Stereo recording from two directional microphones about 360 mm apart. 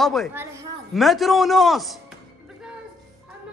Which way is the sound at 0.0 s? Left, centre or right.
Centre.